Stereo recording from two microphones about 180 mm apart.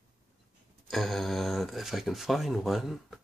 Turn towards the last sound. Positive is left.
turn(degrees=0)  # may be behind; listen again after turning